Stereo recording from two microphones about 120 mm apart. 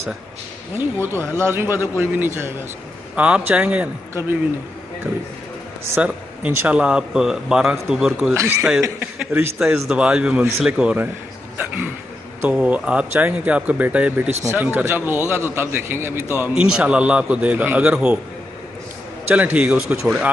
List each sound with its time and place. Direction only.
0.7 s a man's voice: 20° right (ahead or behind)
5.9 s a man's voice: 15° right (ahead or behind)
8.4 s a man's voice: 25° right (ahead or behind)
9.6 s a man's voice: 10° right (ahead or behind)
11.5 s a sound: 15° right (ahead or behind)
12.4 s a man's voice: 10° right (ahead or behind)
19.2 s a man's voice: 15° right (ahead or behind)